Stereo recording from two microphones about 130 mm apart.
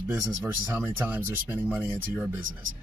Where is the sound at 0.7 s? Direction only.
15° right (ahead or behind).